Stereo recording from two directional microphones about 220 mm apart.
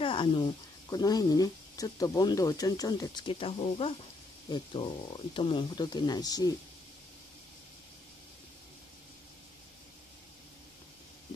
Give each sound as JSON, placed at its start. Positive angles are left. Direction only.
{"t": 0.0, "sound": "speech", "side_deg": 25}